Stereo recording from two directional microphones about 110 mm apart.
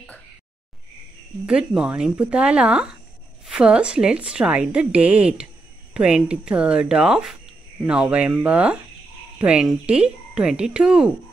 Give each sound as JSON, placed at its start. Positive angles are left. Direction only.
{"t": 1.4, "sound": "speech", "side_deg": -10}